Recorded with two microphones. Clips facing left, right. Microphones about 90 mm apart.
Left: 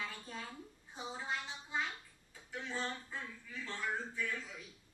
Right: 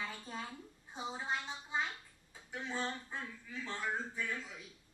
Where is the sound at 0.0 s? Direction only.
20° right (ahead or behind).